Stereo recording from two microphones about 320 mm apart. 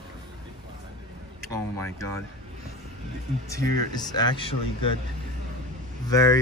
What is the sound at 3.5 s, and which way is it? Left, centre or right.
Speech, centre.